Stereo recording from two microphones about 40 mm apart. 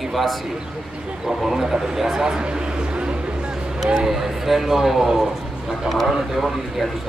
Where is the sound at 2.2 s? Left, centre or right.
Right.